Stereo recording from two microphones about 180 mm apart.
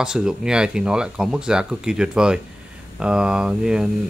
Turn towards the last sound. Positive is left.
turn(degrees=-5)  # may be behind; listen again after turning